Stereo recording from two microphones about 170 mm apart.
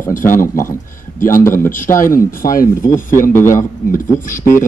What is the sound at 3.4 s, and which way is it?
Speech, 15° left (ahead or behind).